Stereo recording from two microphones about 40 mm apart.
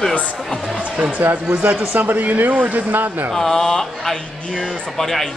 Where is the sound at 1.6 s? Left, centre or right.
Right.